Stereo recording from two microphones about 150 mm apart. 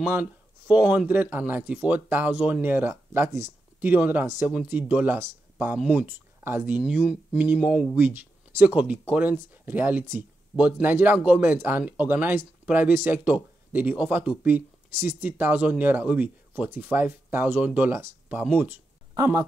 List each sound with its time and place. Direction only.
0.1 s speech: 10° right (ahead or behind)
19.1 s speech: 20° right (ahead or behind)